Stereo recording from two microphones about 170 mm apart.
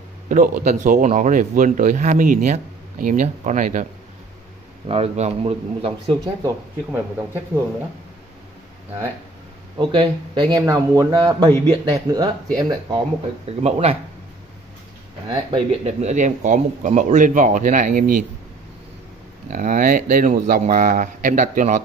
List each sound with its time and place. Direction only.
0.3 s speech: 50° right (ahead or behind)
4.8 s a man's voice: 35° right (ahead or behind)
6.2 s speech: 15° right (ahead or behind)
9.8 s speech: 25° right (ahead or behind)
13.6 s a man's voice: 40° right (ahead or behind)
15.2 s speech: 35° right (ahead or behind); by 18.2 s 55° right (ahead or behind)
19.5 s speech: 55° right (ahead or behind)